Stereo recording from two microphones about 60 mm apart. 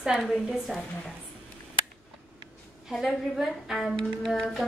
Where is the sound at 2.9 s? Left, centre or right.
Centre.